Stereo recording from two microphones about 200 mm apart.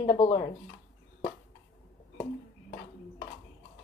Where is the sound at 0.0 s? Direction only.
20° left (ahead or behind).